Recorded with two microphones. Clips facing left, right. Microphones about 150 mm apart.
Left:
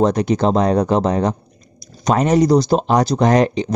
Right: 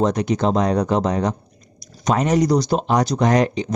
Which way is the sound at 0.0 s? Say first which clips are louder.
Left 3 dB; 30° left (ahead or behind).